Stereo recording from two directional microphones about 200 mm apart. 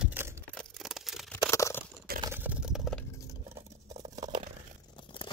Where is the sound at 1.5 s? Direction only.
15° left (ahead or behind).